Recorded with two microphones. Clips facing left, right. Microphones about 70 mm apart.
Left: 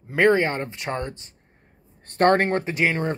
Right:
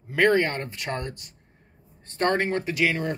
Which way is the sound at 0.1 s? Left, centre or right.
Left.